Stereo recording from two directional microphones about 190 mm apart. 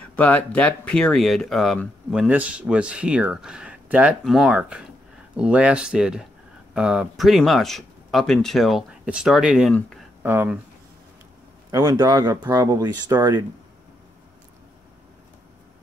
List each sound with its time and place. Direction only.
0.1 s speech: 5° left (ahead or behind)
10.2 s speech: 10° right (ahead or behind)
11.7 s speech: 20° right (ahead or behind)